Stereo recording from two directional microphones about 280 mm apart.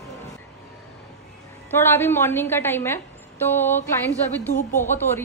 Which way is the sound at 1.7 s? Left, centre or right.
Centre.